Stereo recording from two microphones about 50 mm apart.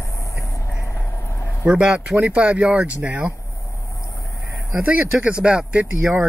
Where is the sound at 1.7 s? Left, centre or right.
Right.